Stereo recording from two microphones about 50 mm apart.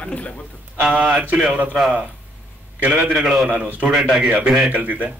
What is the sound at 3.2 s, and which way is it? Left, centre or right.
Speech, centre.